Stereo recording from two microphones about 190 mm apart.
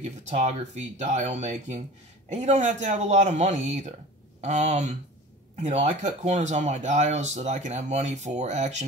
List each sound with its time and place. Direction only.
0.0 s speech: 35° right (ahead or behind)